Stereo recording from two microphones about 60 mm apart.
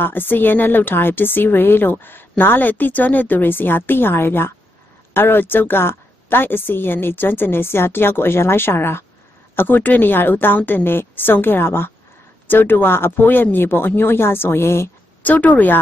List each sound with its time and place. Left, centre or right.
0.0 s a woman's voice: left
9.6 s a woman's voice: left
15.2 s speech: left